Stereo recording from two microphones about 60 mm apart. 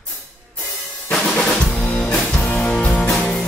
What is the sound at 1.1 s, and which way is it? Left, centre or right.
Drum, centre.